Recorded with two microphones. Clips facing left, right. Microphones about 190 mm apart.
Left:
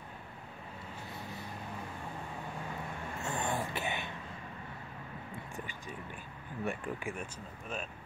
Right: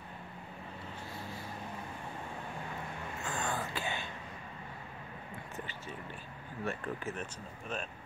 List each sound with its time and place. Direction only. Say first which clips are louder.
3.3 s throat clearing: left 2 dB; 25° left (ahead or behind)
6.6 s speech: left 1 dB; 15° left (ahead or behind)